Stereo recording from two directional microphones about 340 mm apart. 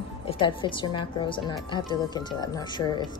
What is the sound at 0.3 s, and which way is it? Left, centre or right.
A woman's voice, centre.